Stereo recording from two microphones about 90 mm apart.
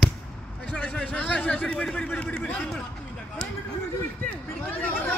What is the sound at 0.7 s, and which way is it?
Speech, 10° left (ahead or behind).